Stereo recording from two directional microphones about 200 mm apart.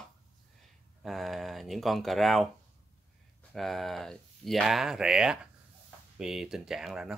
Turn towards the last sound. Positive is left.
turn(degrees=0)  # may be behind; listen again after turning